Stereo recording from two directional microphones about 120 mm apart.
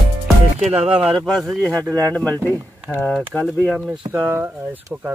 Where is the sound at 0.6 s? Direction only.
55° right (ahead or behind).